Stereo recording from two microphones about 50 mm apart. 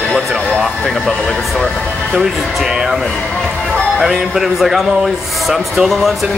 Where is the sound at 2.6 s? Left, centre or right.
Centre.